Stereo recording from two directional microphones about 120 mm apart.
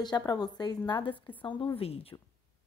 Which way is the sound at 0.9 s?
45° left (ahead or behind).